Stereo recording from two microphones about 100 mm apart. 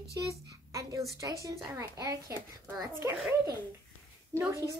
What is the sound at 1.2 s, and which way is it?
A child's voice, 35° right (ahead or behind).